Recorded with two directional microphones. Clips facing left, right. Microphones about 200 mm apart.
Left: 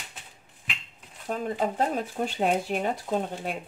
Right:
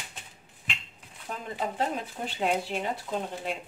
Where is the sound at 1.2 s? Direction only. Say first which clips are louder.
Left 6 dB; 45° left (ahead or behind).